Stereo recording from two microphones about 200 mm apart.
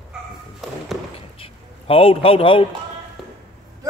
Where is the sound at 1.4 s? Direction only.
30° left (ahead or behind).